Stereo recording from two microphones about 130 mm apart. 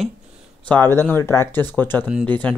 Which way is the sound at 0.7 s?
15° left (ahead or behind).